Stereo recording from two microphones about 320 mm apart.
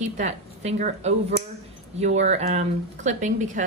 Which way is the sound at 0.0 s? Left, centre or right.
Right.